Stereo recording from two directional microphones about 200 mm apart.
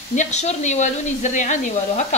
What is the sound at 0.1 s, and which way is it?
Speech, 35° left (ahead or behind).